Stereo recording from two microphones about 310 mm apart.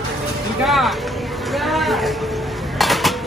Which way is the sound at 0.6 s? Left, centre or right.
Centre.